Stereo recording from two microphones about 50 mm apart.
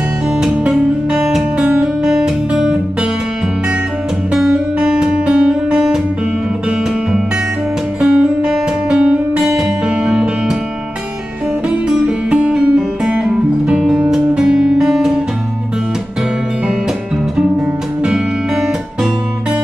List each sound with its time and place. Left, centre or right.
0.4 s music: centre
2.0 s guitar: centre
4.3 s guitar: centre
5.2 s music: centre
8.0 s music: right
12.1 s music: right
17.4 s guitar: centre